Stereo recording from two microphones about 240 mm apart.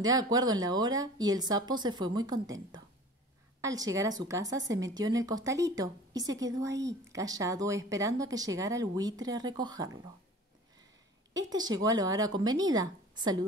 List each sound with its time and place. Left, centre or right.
0.0 s a woman's voice: centre
11.3 s a woman's voice: centre